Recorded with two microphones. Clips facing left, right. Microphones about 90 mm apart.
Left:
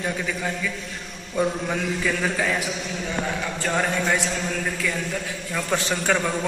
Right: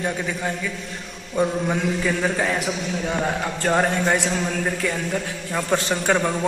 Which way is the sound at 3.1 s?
35° right (ahead or behind).